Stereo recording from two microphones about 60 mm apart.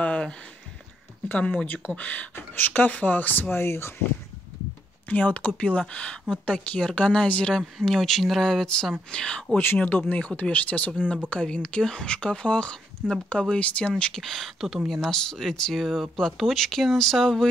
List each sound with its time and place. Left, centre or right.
0.0 s a sound: centre
1.3 s speech: left
5.0 s speech: left
7.5 s speech: centre
9.1 s speech: centre
9.8 s speech: left; by 17.5 s centre